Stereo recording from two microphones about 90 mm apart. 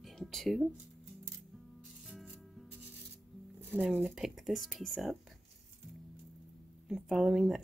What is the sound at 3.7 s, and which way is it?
Speech, 15° right (ahead or behind).